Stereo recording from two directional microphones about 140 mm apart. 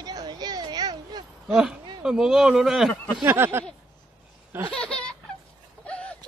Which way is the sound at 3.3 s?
15° right (ahead or behind).